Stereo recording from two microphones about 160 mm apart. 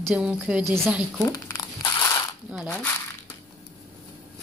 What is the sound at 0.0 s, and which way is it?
Jingle bell, 10° right (ahead or behind).